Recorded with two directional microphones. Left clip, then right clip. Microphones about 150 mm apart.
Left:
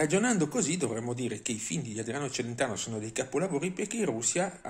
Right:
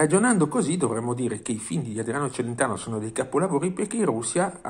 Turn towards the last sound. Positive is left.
turn(degrees=15)  # may be behind; listen again after turning